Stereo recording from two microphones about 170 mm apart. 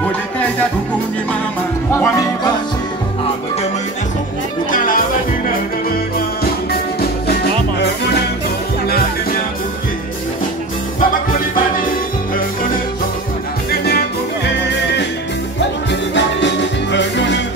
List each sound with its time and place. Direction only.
2.0 s music: 20° left (ahead or behind)
4.6 s music: 55° left (ahead or behind)
6.4 s music: 65° left (ahead or behind)
13.7 s music: 65° left (ahead or behind)
15.9 s music: 90° left